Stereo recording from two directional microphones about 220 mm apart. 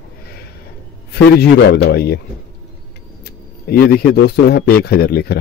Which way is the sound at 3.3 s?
45° left (ahead or behind).